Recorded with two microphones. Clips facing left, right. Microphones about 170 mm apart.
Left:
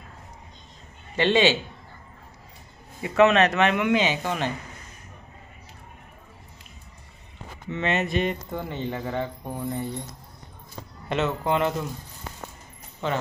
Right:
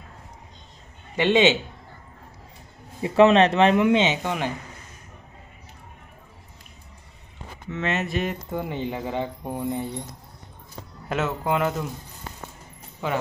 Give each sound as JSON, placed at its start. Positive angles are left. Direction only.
{"t": 1.1, "sound": "speech", "side_deg": -15}
{"t": 3.0, "sound": "speech", "side_deg": -30}
{"t": 7.7, "sound": "speech", "side_deg": 0}
{"t": 11.1, "sound": "speech", "side_deg": -5}
{"t": 13.0, "sound": "speech", "side_deg": -10}